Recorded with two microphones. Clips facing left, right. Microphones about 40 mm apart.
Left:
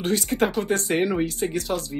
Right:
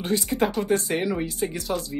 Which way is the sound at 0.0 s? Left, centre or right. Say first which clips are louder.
Left 1 dB; left.